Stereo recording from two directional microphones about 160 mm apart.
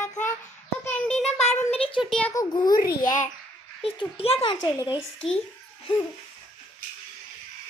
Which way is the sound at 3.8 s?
35° left (ahead or behind).